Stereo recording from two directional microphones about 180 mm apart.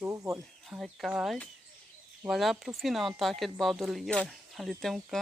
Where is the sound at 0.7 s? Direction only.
Centre (ahead or behind).